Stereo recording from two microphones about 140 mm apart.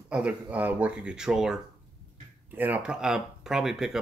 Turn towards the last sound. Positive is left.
turn(degrees=-5)  # may be behind; listen again after turning